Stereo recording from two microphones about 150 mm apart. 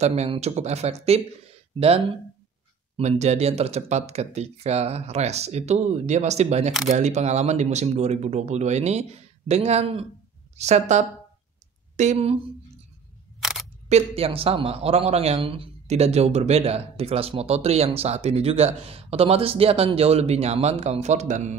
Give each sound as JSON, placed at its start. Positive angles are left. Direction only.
{"t": 0.0, "sound": "a man's voice", "side_deg": -45}
{"t": 13.4, "sound": "camera", "side_deg": -5}
{"t": 13.8, "sound": "a man's voice", "side_deg": -45}